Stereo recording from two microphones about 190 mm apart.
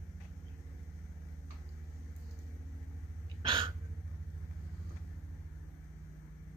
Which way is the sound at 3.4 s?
25° right (ahead or behind).